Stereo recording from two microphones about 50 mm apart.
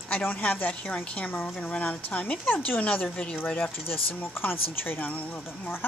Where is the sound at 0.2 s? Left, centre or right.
Left.